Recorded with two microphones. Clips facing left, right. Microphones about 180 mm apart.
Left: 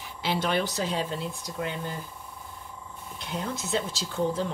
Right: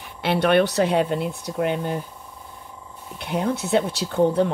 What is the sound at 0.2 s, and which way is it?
Speech, 65° right (ahead or behind).